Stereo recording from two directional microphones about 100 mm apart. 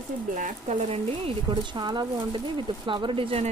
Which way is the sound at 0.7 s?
90° right.